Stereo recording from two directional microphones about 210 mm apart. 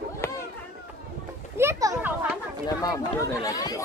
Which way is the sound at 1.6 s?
15° right (ahead or behind).